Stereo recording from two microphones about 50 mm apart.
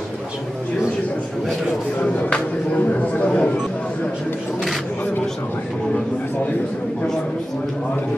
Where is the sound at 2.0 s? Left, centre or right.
Left.